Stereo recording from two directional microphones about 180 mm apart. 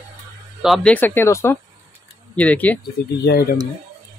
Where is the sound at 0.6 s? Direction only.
Centre (ahead or behind).